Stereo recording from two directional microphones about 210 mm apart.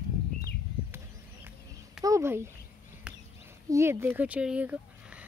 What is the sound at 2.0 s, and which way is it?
Speech, 15° right (ahead or behind).